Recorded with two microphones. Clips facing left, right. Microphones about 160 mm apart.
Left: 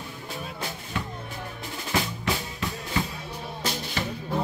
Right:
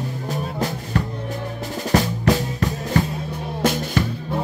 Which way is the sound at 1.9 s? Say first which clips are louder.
Right 9 dB; 40° right (ahead or behind).